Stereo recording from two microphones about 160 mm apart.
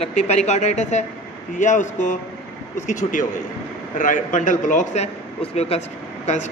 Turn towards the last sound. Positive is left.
turn(degrees=45)  # may be behind; listen again after turning